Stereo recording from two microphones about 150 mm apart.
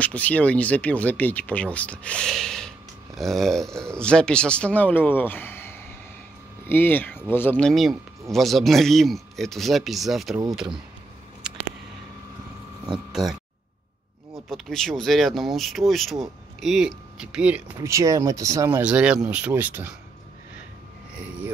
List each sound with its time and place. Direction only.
0.0 s speech: 10° left (ahead or behind)
13.1 s speech: centre (ahead or behind)
17.7 s speech: 20° right (ahead or behind)
18.8 s speech: 10° right (ahead or behind)